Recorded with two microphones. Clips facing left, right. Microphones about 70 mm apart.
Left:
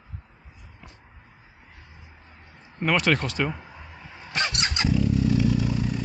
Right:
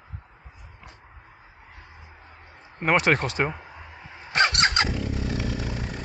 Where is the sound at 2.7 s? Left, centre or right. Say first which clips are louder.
Right 1 dB; right.